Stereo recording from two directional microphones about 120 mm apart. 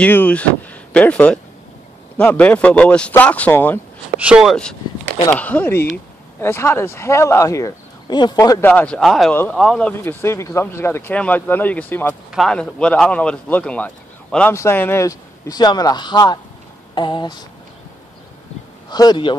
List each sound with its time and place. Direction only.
0.0 s speech: 10° left (ahead or behind)
4.2 s speech: 5° right (ahead or behind)
5.3 s speech: 10° left (ahead or behind); by 8.6 s 30° left (ahead or behind)
8.6 s speech: 10° left (ahead or behind)
9.9 s speech: 20° left (ahead or behind)
12.3 s speech: centre (ahead or behind); by 17.5 s 35° left (ahead or behind)
18.9 s a man's voice: 35° left (ahead or behind)